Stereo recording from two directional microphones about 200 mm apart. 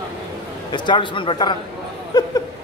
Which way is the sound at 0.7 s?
25° left (ahead or behind).